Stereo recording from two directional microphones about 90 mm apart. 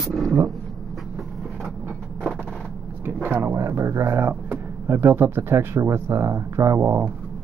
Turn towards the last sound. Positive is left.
turn(degrees=-25)  # may be behind; listen again after turning